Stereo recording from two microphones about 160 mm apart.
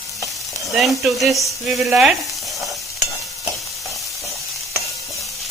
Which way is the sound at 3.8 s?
Centre (ahead or behind).